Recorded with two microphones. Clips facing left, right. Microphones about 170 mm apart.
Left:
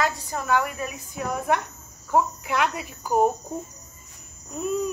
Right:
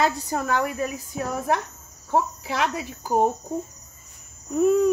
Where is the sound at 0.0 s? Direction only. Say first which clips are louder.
Right 3 dB; 35° right (ahead or behind).